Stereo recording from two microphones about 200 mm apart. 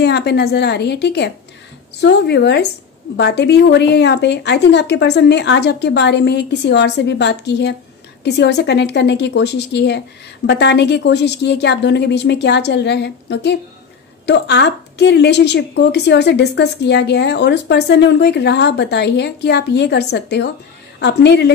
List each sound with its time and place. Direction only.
0.0 s a woman's voice: 55° left (ahead or behind)